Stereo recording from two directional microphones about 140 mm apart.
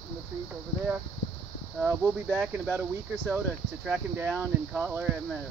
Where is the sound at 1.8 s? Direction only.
10° right (ahead or behind).